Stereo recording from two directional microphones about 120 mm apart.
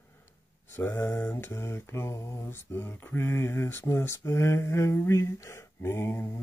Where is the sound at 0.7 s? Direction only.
20° left (ahead or behind).